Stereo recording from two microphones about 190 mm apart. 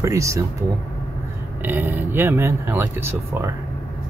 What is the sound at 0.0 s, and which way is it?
Speech, 15° right (ahead or behind).